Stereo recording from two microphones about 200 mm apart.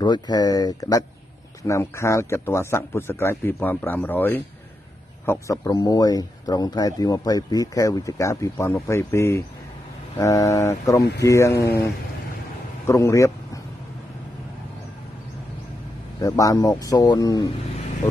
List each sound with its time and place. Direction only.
0.0 s speech: 20° left (ahead or behind)
16.2 s speech: 15° left (ahead or behind)